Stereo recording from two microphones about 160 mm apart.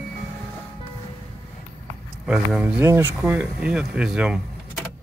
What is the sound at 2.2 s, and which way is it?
Speech, 5° right (ahead or behind).